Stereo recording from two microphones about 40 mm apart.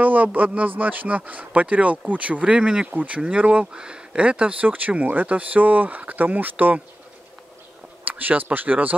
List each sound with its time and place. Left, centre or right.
0.0 s speech: right
4.6 s speech: right
8.0 s speech: right